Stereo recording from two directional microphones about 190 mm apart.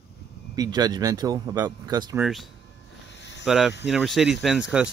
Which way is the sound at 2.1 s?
5° right (ahead or behind).